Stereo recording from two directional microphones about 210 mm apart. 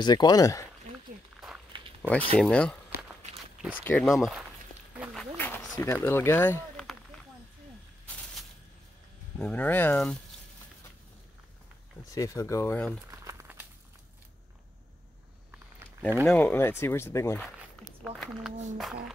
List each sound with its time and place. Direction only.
0.0 s speech: 20° left (ahead or behind)
2.0 s a sound: 5° left (ahead or behind)
2.3 s speech: 5° left (ahead or behind)
4.9 s a sound: 5° right (ahead or behind)
5.4 s a sound: 10° left (ahead or behind)
6.0 s speech: 10° left (ahead or behind)
9.4 s speech: 5° left (ahead or behind)
12.1 s speech: 15° left (ahead or behind)
13.1 s crumpling: 15° right (ahead or behind)
16.3 s speech: 10° left (ahead or behind)
18.0 s speech: centre (ahead or behind)